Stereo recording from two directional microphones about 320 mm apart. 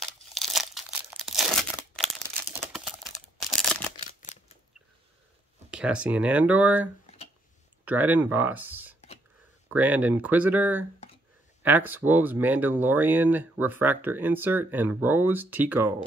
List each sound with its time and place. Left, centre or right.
0.0 s crumpling: centre
2.5 s computer keyboard: centre
3.9 s camera: left
5.7 s speech: centre